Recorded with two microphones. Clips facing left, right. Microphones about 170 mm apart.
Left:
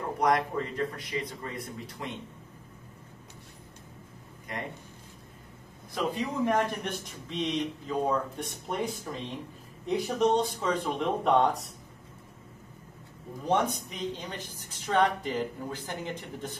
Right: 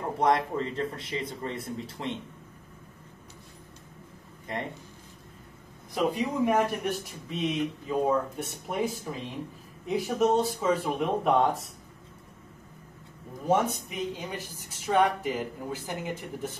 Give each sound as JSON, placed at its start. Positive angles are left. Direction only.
{"t": 0.2, "sound": "speech", "side_deg": -25}
{"t": 5.9, "sound": "a man's voice", "side_deg": -10}
{"t": 13.5, "sound": "speech", "side_deg": -10}